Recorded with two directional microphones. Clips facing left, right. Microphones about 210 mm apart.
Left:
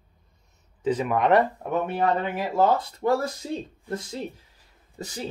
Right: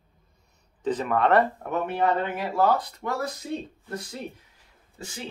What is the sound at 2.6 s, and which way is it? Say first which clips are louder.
Speech: left 1 dB; 25° left (ahead or behind).